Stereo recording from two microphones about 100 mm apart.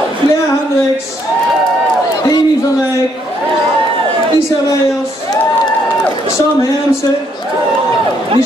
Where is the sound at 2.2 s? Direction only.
35° left (ahead or behind).